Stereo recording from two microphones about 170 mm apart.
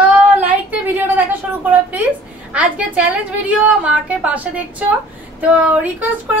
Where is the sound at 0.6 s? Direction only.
10° right (ahead or behind).